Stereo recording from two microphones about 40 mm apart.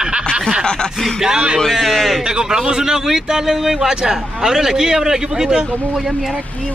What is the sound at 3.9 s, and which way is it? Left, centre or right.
Speech, centre.